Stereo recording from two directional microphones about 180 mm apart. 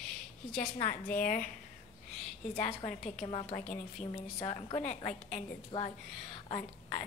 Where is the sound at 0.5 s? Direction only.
45° left (ahead or behind).